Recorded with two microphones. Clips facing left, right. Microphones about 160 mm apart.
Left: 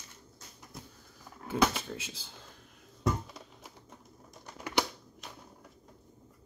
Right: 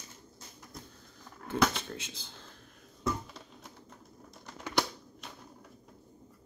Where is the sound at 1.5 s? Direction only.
5° left (ahead or behind).